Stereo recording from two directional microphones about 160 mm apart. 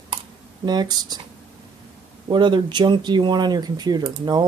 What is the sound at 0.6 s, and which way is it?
Speech, 25° right (ahead or behind).